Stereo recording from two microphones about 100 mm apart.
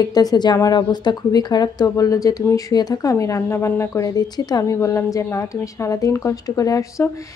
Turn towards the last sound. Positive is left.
turn(degrees=35)  # may be behind; listen again after turning